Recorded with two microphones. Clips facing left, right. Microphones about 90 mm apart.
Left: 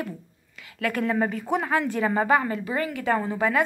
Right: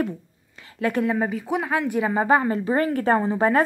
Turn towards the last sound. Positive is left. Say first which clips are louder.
# right 4 dB
turn(degrees=-35)  # may be behind; listen again after turning